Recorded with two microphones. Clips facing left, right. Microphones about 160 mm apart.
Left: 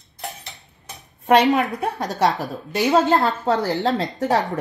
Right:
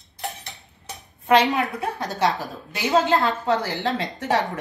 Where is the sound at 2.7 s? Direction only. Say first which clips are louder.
Left 3 dB; 40° left (ahead or behind).